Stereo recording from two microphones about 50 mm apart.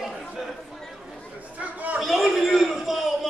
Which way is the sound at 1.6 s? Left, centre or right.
Right.